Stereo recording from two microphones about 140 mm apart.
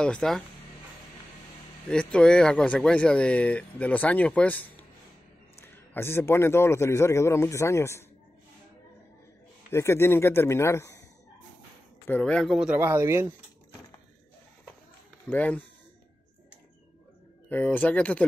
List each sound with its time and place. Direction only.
0.0 s speech: 5° left (ahead or behind)
1.9 s a man's voice: 5° left (ahead or behind)
9.7 s a man's voice: 20° left (ahead or behind)
12.1 s speech: 5° left (ahead or behind)
12.7 s speech: 15° right (ahead or behind)
15.2 s speech: 10° left (ahead or behind)
17.5 s speech: 10° left (ahead or behind)